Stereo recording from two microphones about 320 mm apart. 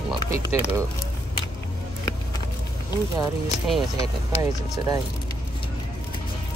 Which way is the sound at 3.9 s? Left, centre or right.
Centre.